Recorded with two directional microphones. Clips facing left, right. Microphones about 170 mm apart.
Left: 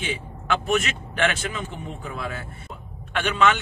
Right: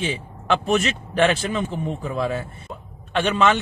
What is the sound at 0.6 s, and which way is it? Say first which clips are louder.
A man's voice: right 3 dB; 35° right (ahead or behind).